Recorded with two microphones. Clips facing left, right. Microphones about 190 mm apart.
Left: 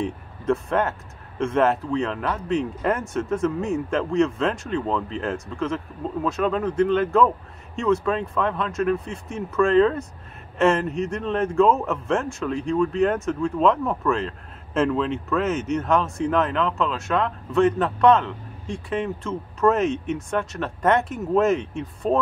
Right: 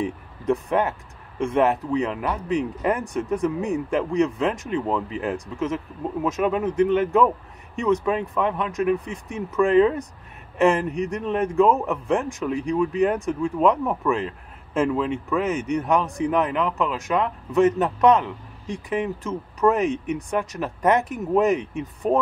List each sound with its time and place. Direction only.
0.0 s speech: 15° right (ahead or behind)